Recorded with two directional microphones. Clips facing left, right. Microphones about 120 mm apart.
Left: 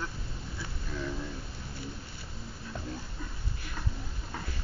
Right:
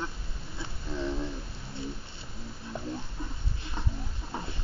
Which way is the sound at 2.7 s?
15° right (ahead or behind).